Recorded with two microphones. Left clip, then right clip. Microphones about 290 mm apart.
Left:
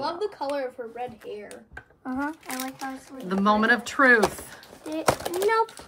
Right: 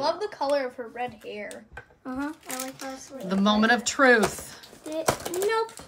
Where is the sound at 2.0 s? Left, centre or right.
Centre.